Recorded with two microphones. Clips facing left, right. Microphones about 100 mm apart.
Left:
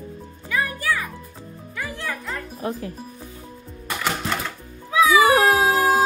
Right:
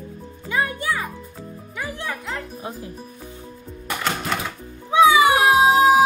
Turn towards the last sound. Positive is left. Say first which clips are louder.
# right 4 dB
turn(degrees=-10)  # may be behind; listen again after turning